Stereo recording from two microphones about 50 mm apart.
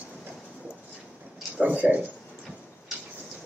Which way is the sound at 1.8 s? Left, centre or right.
Centre.